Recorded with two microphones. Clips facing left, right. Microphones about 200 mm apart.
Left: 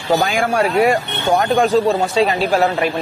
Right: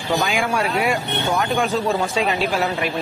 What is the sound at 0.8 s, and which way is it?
Speech, 50° left (ahead or behind).